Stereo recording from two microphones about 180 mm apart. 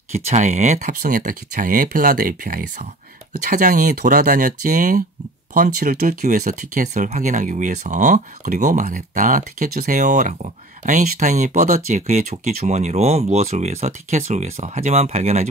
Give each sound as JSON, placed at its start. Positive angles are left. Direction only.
{"t": 0.1, "sound": "speech", "side_deg": -40}